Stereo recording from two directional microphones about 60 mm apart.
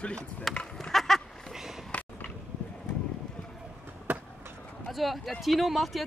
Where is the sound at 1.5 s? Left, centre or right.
Centre.